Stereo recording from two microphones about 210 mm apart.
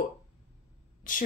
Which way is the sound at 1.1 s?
40° left (ahead or behind).